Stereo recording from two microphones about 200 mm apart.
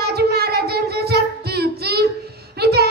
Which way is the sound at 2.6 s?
50° right (ahead or behind).